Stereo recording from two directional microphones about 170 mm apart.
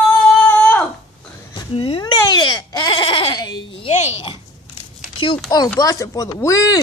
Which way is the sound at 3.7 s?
35° left (ahead or behind).